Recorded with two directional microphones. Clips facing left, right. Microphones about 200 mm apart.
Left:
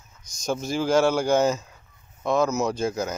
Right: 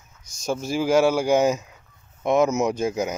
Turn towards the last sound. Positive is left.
turn(degrees=-15)  # may be behind; listen again after turning